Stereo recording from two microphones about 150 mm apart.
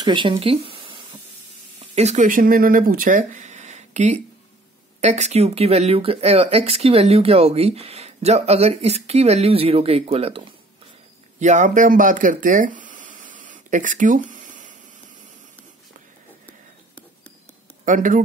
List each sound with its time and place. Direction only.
0.0 s speech: 30° right (ahead or behind)
2.0 s speech: 50° right (ahead or behind)
11.3 s a sound: 55° right (ahead or behind)
17.8 s speech: 60° right (ahead or behind)